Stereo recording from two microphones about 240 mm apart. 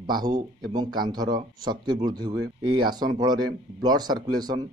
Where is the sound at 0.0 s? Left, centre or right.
Centre.